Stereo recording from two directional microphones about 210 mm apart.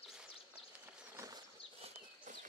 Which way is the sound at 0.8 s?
15° right (ahead or behind).